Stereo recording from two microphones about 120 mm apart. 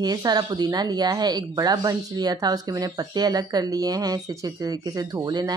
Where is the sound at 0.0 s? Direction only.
35° right (ahead or behind).